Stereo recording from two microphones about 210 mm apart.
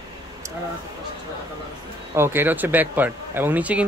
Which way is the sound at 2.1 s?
10° right (ahead or behind).